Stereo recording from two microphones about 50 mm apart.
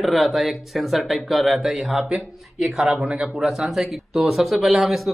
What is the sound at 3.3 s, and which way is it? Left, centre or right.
Speech, centre.